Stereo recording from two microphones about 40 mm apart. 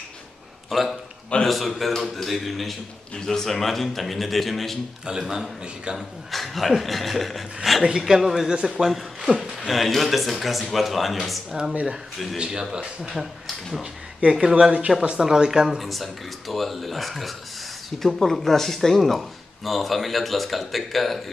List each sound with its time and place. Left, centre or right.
0.7 s a man's voice: centre
5.0 s a woman's voice: centre
5.9 s a woman's voice: centre
11.7 s speech: right
13.1 s speech: centre
14.3 s a woman's voice: centre
15.8 s speech: centre